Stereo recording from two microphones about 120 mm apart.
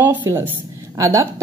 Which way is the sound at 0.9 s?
25° right (ahead or behind).